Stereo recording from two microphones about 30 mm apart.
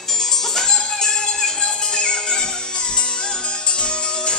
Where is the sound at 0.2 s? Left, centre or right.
Centre.